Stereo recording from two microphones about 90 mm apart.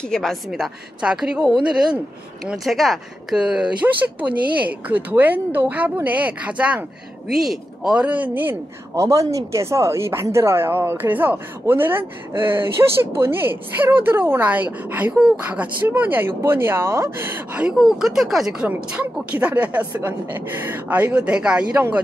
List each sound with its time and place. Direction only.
0.0 s a woman's voice: 5° left (ahead or behind); by 6.8 s 15° right (ahead or behind)
7.2 s speech: 5° right (ahead or behind); by 8.5 s 20° right (ahead or behind)
8.9 s a woman's voice: 35° right (ahead or behind)
17.6 s speech: 10° right (ahead or behind)
21.7 s a woman's voice: 25° right (ahead or behind)